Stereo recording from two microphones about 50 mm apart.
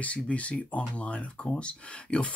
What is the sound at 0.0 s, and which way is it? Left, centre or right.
Speech, left.